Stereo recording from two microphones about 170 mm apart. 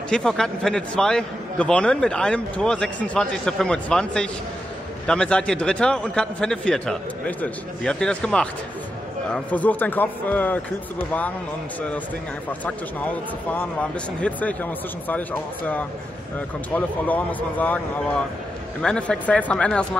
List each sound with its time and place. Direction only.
0.1 s a man's voice: 5° left (ahead or behind)
12.4 s speech: 10° left (ahead or behind)